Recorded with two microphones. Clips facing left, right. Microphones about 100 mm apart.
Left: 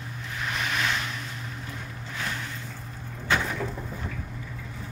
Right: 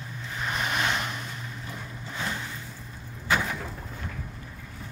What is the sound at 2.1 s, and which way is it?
Vehicle, 15° right (ahead or behind).